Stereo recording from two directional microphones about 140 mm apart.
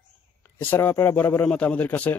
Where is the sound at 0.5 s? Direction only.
15° left (ahead or behind).